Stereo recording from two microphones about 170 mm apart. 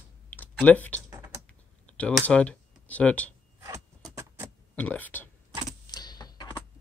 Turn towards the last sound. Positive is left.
turn(degrees=25)  # may be behind; listen again after turning